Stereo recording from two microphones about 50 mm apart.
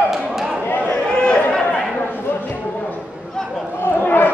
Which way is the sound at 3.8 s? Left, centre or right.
Left.